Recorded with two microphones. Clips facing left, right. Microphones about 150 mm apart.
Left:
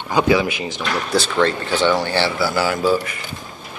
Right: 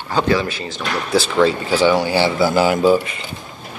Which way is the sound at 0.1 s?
10° left (ahead or behind).